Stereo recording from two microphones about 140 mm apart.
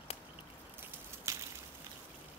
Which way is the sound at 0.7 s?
20° right (ahead or behind).